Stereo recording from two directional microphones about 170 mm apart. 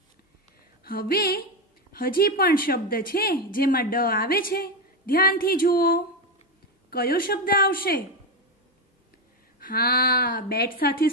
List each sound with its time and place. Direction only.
0.8 s a woman's voice: 60° left (ahead or behind)
9.6 s a woman's voice: 60° left (ahead or behind)